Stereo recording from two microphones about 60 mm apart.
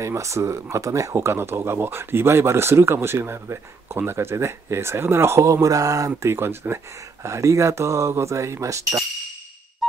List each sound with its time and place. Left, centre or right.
0.0 s speech: right
1.1 s speech: right
6.2 s speech: right
7.2 s speech: right